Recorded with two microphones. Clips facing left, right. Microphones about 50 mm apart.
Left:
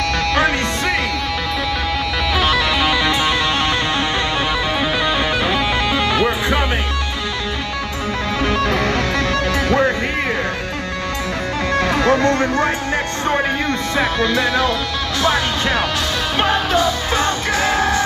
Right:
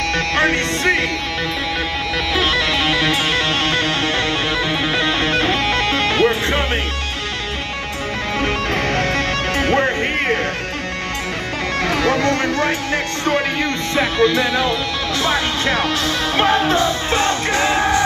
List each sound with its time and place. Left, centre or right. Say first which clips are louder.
0.3 s music: right 1 dB; right
2.9 s music: left 1 dB; right
5.2 s music: even; right
8.4 s music: left 2 dB; right
11.9 s music: left 1 dB; left
13.9 s music: right 3 dB; right
16.8 s music: even; right